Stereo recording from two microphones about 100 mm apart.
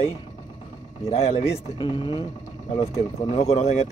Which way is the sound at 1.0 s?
90° left.